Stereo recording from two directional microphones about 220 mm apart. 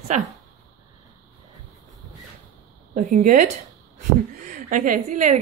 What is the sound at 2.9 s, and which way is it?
Speech, 35° right (ahead or behind).